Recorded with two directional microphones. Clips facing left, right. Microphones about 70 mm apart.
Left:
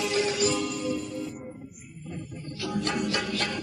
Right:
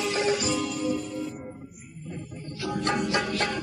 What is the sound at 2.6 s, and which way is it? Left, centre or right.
Music, right.